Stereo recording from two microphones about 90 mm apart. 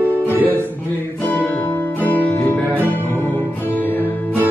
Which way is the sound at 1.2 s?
25° left (ahead or behind).